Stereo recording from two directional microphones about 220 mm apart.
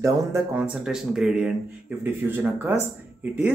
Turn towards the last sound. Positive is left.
turn(degrees=-5)  # may be behind; listen again after turning